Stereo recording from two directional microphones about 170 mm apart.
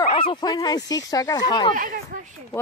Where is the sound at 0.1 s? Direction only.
30° left (ahead or behind).